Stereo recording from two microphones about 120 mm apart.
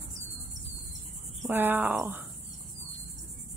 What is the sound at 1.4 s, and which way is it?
Speech, 20° right (ahead or behind).